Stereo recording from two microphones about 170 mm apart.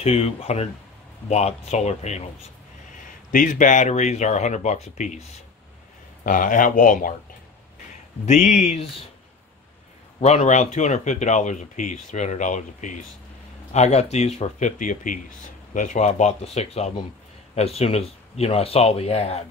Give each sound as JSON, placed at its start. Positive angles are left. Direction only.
{"t": 0.0, "sound": "speech", "side_deg": 40}
{"t": 3.3, "sound": "speech", "side_deg": 50}
{"t": 6.2, "sound": "speech", "side_deg": 50}
{"t": 8.3, "sound": "speech", "side_deg": 50}
{"t": 10.2, "sound": "speech", "side_deg": 40}